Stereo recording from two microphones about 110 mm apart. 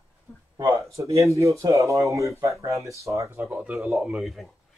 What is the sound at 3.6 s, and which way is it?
Speech, 5° right (ahead or behind).